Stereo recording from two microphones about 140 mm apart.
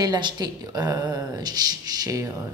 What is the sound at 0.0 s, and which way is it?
A woman's voice, 30° right (ahead or behind).